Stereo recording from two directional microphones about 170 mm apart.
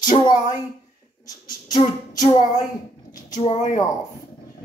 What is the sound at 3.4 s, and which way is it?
Speech, 40° left (ahead or behind).